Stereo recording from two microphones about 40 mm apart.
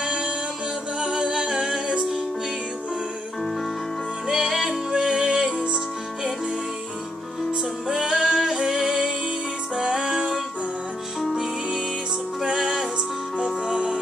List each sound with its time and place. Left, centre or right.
0.0 s music: centre
4.3 s music: centre
7.9 s music: centre
12.5 s music: centre